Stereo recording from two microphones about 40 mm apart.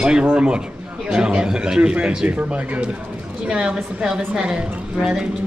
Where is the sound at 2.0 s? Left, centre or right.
Right.